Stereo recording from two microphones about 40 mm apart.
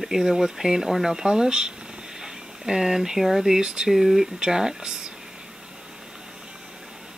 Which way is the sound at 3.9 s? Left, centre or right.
Centre.